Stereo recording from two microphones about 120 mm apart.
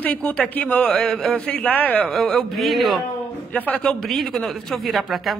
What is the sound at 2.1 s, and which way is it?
Speech, centre (ahead or behind).